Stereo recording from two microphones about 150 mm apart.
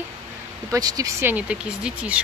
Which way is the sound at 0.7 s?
25° right (ahead or behind).